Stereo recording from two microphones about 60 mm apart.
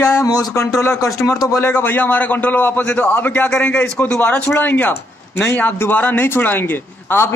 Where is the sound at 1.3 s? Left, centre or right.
Left.